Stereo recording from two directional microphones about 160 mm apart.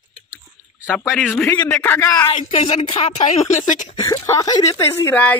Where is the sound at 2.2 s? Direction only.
40° left (ahead or behind).